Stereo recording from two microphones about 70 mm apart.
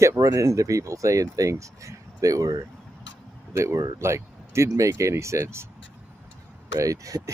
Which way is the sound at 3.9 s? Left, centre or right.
Right.